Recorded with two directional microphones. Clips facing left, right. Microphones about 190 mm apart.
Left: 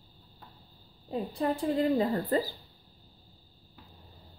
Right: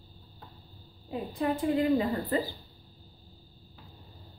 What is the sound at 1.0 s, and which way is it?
A woman's voice, 35° left (ahead or behind).